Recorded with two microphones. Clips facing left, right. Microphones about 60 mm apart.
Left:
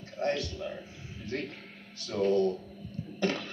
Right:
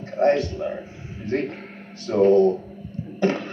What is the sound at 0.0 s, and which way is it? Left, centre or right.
A man's voice, right.